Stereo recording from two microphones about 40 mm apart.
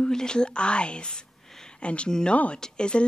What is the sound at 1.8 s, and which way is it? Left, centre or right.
A woman's voice, left.